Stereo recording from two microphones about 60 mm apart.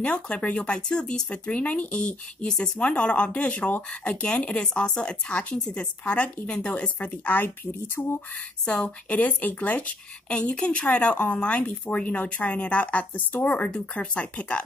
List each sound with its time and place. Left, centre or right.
0.0 s speech: centre